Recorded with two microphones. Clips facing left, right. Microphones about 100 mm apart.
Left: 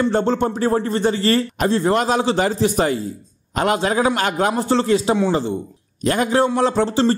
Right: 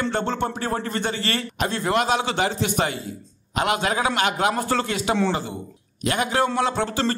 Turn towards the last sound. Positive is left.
turn(degrees=30)  # may be behind; listen again after turning